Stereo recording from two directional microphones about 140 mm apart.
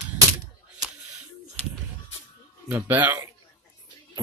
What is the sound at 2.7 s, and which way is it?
Speech, 15° right (ahead or behind).